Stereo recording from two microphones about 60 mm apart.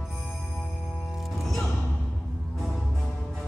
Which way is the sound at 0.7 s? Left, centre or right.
Left.